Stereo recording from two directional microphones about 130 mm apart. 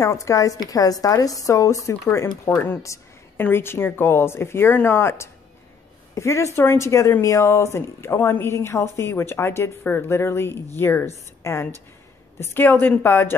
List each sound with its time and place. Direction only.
0.0 s a woman's voice: 25° left (ahead or behind)